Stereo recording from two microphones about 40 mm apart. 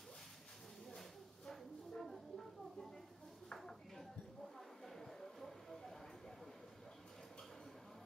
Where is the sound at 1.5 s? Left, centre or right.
Centre.